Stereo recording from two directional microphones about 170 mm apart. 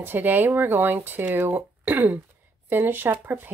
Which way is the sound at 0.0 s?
10° right (ahead or behind).